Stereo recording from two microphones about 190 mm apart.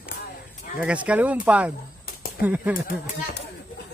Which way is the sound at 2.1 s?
50° left (ahead or behind).